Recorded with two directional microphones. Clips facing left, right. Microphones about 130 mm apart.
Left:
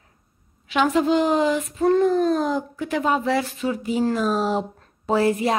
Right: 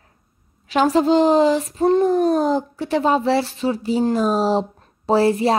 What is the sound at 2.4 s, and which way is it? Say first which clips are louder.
Speech: right 4 dB; 35° right (ahead or behind).